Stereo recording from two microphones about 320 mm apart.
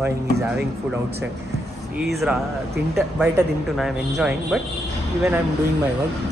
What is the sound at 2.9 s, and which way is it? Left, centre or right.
Speech, centre.